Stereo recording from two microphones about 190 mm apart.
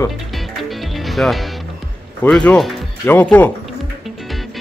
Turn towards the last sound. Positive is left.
turn(degrees=10)  # may be behind; listen again after turning